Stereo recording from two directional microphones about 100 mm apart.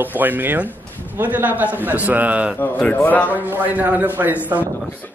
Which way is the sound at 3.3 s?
15° right (ahead or behind).